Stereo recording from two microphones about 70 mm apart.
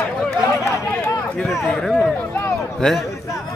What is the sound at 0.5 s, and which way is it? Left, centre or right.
Run, left.